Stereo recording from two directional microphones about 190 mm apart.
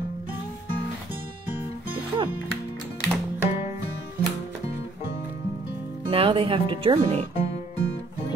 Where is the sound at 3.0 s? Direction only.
10° right (ahead or behind).